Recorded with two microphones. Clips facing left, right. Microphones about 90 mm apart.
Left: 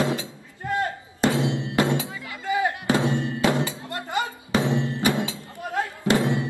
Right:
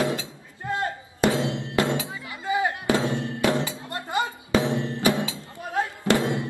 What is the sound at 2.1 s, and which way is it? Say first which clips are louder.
Music: even; 25° right (ahead or behind).